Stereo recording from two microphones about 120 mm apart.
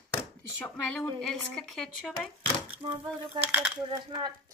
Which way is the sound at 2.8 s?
50° right (ahead or behind).